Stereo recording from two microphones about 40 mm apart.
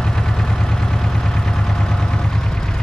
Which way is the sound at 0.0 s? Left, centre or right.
Centre.